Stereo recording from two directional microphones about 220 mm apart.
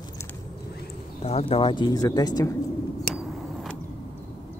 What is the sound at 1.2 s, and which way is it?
Speech, 25° left (ahead or behind).